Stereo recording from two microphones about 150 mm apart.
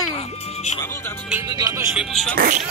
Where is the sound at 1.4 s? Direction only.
25° right (ahead or behind).